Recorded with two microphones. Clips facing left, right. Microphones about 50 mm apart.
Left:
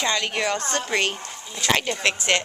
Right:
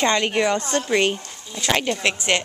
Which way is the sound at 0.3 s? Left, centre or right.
Centre.